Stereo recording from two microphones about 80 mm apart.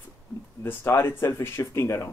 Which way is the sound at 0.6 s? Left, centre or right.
Left.